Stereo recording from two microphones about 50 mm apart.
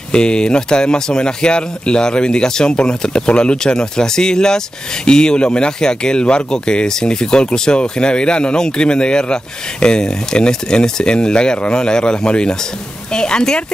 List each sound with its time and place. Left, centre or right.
0.1 s speech: centre